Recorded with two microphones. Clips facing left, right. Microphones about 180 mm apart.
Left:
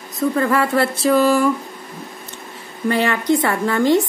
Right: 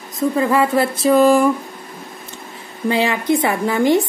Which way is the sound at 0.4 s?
15° right (ahead or behind).